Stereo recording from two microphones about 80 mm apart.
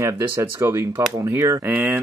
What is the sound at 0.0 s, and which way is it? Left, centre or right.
Speech, right.